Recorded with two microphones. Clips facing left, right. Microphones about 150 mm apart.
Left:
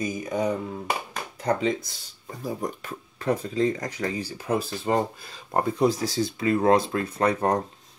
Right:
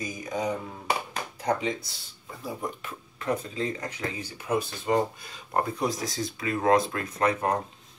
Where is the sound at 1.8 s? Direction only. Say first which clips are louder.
Left 3 dB; 45° left (ahead or behind).